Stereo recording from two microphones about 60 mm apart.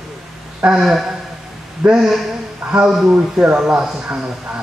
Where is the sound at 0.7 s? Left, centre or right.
Centre.